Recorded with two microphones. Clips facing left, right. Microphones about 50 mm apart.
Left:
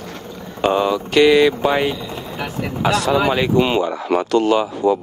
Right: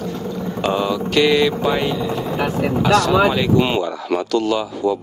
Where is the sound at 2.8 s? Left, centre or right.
Centre.